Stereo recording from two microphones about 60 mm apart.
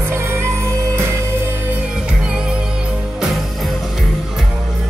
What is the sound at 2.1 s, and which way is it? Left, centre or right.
Music, centre.